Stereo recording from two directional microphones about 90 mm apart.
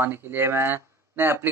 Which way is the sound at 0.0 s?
25° right (ahead or behind).